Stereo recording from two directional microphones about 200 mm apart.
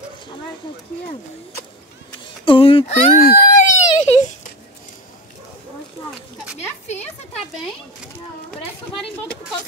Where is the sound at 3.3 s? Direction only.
40° left (ahead or behind).